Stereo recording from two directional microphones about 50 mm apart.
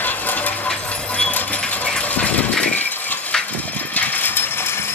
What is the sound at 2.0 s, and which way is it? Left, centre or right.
Engine, left.